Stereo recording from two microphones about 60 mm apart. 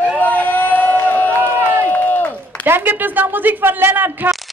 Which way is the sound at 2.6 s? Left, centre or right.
Right.